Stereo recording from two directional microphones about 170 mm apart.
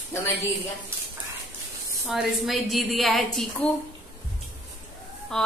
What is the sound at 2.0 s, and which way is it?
Speech, centre (ahead or behind).